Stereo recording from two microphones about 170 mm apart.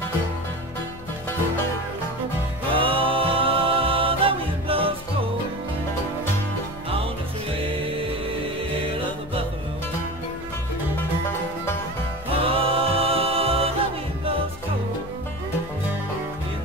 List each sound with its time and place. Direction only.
2.7 s music: 30° right (ahead or behind)
12.3 s music: 35° right (ahead or behind)